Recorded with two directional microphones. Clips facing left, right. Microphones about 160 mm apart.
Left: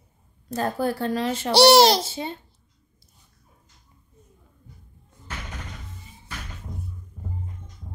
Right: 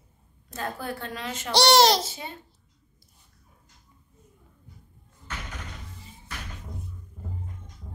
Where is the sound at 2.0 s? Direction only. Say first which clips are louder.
Left 5 dB; 30° left (ahead or behind).